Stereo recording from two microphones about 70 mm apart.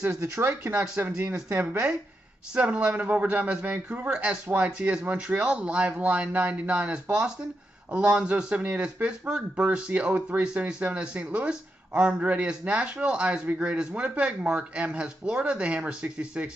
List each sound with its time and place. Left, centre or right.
0.1 s speech: right
1.5 s speech: right